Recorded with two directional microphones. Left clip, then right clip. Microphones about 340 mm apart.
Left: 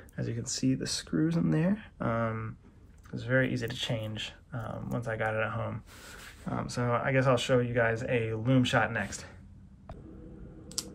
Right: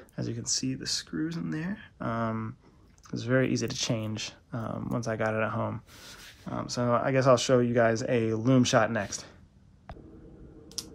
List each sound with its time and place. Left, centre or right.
0.1 s speech: centre
10.8 s typing: centre